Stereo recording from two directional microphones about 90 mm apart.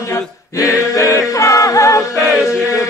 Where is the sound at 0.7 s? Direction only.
35° left (ahead or behind).